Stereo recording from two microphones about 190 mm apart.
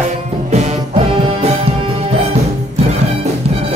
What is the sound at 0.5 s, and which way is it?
Music, 35° right (ahead or behind).